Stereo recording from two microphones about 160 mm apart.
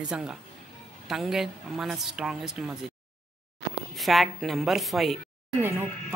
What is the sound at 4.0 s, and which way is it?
Speech, centre (ahead or behind).